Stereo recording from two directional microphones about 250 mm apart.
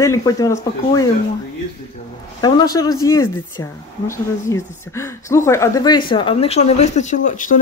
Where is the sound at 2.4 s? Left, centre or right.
Centre.